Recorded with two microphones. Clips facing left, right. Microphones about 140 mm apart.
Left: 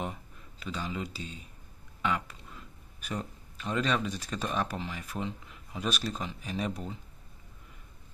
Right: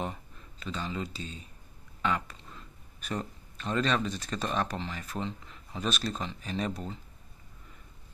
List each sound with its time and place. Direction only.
0.0 s speech: 10° left (ahead or behind)